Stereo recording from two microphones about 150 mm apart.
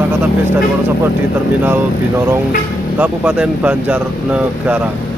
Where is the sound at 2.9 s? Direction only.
5° right (ahead or behind).